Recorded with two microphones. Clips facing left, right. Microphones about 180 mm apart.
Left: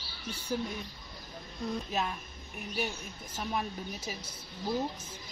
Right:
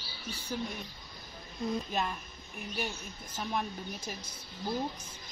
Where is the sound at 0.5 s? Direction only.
5° left (ahead or behind).